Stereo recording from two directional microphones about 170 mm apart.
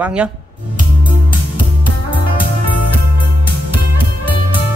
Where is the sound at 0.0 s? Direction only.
5° right (ahead or behind).